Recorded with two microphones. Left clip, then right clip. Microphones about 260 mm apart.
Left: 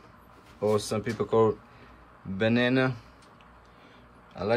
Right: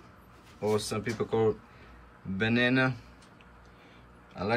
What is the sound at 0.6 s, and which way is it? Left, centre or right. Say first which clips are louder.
Speech: left 3 dB; centre.